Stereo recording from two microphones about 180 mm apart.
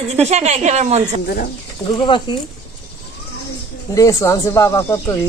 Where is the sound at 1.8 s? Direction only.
25° left (ahead or behind).